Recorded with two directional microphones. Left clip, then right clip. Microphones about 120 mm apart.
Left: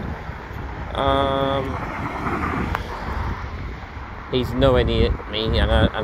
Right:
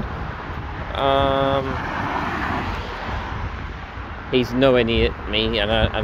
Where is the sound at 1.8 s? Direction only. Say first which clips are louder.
Right 4 dB; 5° right (ahead or behind).